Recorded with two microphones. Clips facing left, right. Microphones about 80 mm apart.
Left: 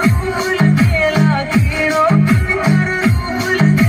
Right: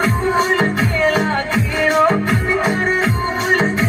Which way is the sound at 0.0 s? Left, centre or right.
Right.